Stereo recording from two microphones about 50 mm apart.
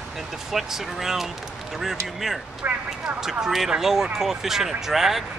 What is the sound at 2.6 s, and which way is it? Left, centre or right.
Speech, right.